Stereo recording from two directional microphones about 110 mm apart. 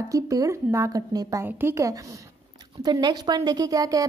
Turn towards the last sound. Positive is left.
turn(degrees=-30)  # may be behind; listen again after turning